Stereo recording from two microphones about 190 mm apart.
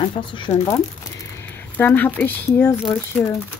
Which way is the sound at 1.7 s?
10° left (ahead or behind).